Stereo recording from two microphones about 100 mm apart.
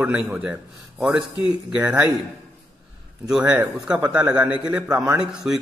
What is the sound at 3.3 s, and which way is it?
A man's voice, 5° right (ahead or behind).